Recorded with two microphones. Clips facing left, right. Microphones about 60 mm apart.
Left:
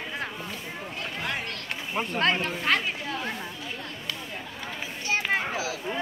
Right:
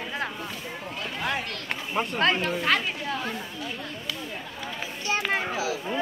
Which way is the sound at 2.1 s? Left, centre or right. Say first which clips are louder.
Right 1 dB; left.